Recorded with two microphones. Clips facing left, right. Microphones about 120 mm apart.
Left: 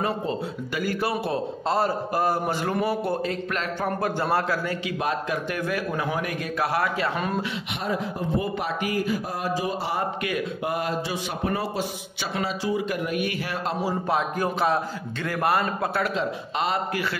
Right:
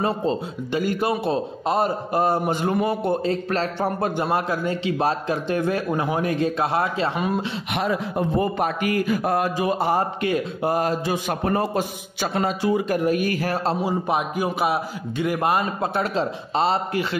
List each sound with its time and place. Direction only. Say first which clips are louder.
0.0 s a man's voice: right 4 dB; 30° right (ahead or behind)
4.2 s a man's voice: right 1 dB; 20° right (ahead or behind)
7.7 s speech: right 6 dB; 65° right (ahead or behind)
8.4 s speech: right 4 dB; 45° right (ahead or behind)
10.2 s a man's voice: right 5 dB; 30° right (ahead or behind); by 13.0 s 50° right (ahead or behind)
13.0 s speech: right 6 dB; 40° right (ahead or behind)
13.8 s a man's voice: right 2 dB; 15° right (ahead or behind)